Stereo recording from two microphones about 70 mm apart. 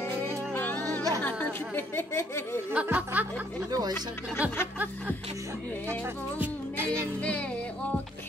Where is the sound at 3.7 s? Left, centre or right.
Right.